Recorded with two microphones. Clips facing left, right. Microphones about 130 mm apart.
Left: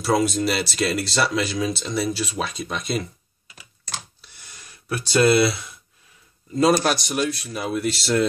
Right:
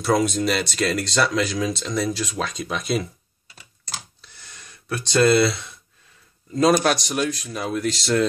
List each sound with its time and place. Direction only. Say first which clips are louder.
0.0 s speech: even; 5° left (ahead or behind)
3.4 s typing: left 1 dB; 30° right (ahead or behind)
4.2 s a sound: right 1 dB; 5° left (ahead or behind)
6.8 s speech: right 1 dB; centre (ahead or behind)